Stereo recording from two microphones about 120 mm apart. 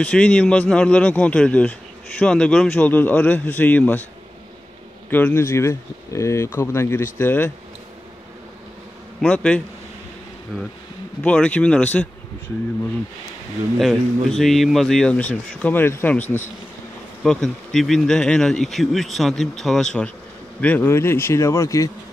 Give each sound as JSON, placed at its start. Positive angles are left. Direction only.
{"t": 0.0, "sound": "a man's voice", "side_deg": 10}
{"t": 5.1, "sound": "a man's voice", "side_deg": 20}
{"t": 9.2, "sound": "a man's voice", "side_deg": 10}
{"t": 13.7, "sound": "a man's voice", "side_deg": 0}
{"t": 17.2, "sound": "speech", "side_deg": 5}
{"t": 20.6, "sound": "speech", "side_deg": 15}